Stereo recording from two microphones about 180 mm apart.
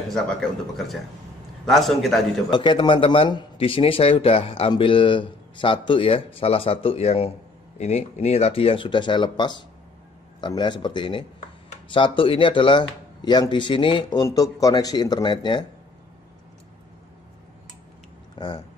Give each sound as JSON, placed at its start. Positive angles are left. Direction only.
{"t": 0.1, "sound": "speech", "side_deg": 5}
{"t": 2.5, "sound": "speech", "side_deg": 25}